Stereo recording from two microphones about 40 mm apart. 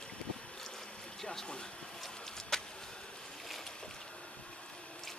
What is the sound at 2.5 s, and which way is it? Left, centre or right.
Vehicle, centre.